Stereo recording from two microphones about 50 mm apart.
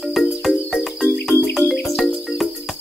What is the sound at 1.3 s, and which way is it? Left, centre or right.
Music, left.